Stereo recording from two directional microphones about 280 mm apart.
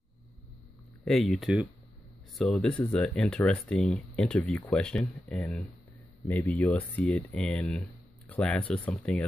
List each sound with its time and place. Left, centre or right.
1.0 s speech: centre